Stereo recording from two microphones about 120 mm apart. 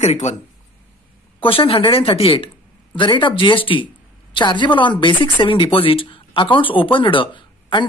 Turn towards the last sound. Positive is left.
turn(degrees=40)  # may be behind; listen again after turning